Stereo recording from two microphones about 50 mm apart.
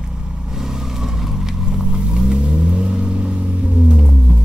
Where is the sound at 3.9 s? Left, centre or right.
Centre.